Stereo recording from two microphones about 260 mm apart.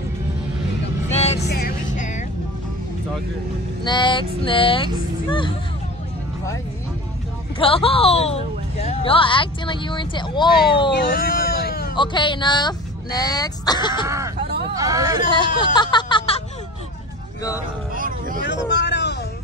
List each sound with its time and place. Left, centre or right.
1.1 s vehicle: left
1.5 s music: left
3.8 s a woman's voice: centre
7.5 s a woman's voice: left
10.9 s a sound: left
11.9 s speech: centre
14.0 s a sound: centre
14.8 s speech: centre
15.3 s music: centre
17.4 s speech: centre
17.9 s vehicle: right
18.4 s speech: left